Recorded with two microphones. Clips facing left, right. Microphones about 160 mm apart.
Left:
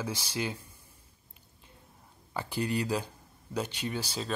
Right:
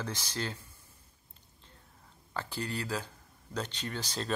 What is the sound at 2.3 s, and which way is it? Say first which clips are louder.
Speech: left 5 dB; 15° left (ahead or behind).